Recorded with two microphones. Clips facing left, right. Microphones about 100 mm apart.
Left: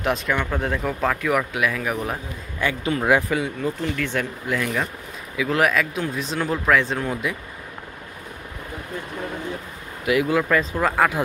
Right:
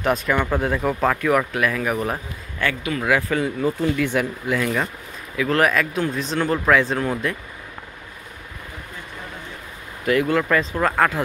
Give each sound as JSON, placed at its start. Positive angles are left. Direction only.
{"t": 0.0, "sound": "speech", "side_deg": -5}
{"t": 2.8, "sound": "speech", "side_deg": 25}
{"t": 3.4, "sound": "speech", "side_deg": -5}
{"t": 10.0, "sound": "speech", "side_deg": 5}